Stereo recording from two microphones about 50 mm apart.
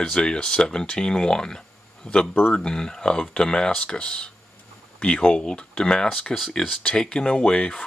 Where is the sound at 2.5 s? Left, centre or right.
Centre.